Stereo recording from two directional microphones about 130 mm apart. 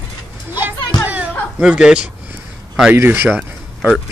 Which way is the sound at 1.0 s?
10° right (ahead or behind).